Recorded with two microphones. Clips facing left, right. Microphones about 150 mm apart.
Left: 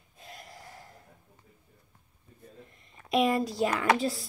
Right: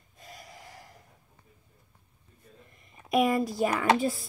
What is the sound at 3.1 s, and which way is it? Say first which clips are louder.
Speech: right 1 dB; 50° right (ahead or behind).